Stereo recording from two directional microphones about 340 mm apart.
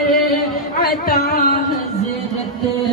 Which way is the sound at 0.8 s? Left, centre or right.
Left.